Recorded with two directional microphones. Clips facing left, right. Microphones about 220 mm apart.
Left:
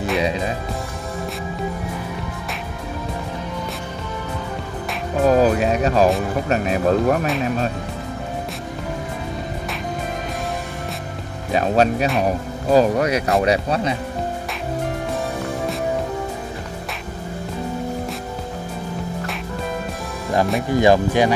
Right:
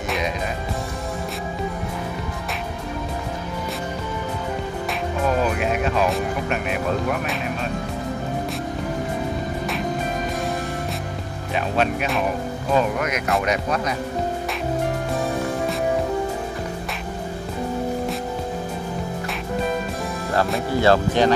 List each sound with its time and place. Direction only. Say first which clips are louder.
5.2 s music: left 7 dB; 40° left (ahead or behind)
6.5 s speech: left 9 dB; 35° left (ahead or behind)
11.5 s speech: left 5 dB; 40° left (ahead or behind)
20.8 s speech: left 2 dB; 15° left (ahead or behind)